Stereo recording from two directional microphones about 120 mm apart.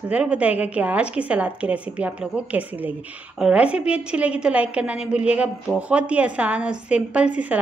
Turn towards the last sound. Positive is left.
turn(degrees=-10)  # may be behind; listen again after turning